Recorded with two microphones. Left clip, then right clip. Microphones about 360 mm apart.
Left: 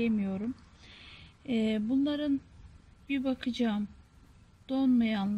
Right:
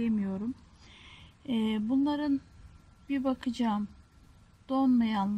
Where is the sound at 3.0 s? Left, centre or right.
Centre.